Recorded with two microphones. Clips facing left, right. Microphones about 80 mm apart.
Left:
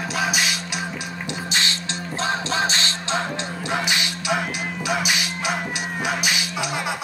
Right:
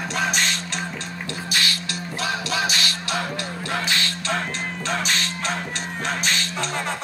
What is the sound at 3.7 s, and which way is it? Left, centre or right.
Music, centre.